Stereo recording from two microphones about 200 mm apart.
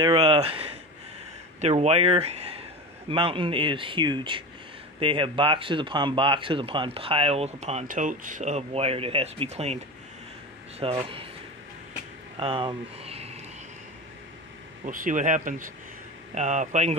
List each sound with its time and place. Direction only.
0.0 s speech: 25° right (ahead or behind)
10.8 s speech: 30° right (ahead or behind)
12.4 s speech: 25° right (ahead or behind)
14.9 s speech: 40° right (ahead or behind)